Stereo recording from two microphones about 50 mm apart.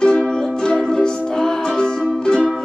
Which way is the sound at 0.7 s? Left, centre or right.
Centre.